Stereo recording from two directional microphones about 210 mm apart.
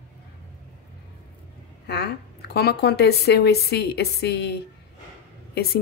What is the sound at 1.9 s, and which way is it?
A woman's voice, 50° left (ahead or behind).